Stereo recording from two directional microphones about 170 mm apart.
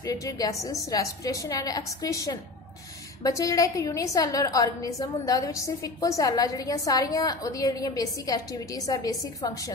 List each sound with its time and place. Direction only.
0.0 s a woman's voice: 20° left (ahead or behind)